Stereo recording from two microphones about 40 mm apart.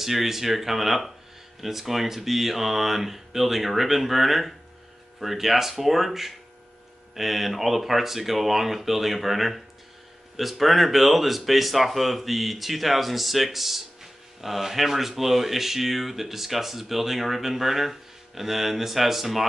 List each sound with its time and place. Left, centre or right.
0.0 s speech: centre